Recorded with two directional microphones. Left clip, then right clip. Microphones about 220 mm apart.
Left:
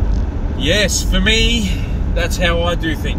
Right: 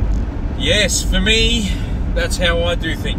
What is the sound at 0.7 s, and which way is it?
Speech, 5° left (ahead or behind).